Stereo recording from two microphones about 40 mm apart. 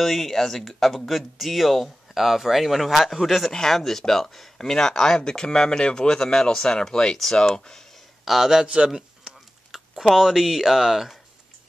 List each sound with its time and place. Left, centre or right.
0.0 s speech: centre
8.3 s a man's voice: centre
8.6 s speech: right
8.9 s typing: centre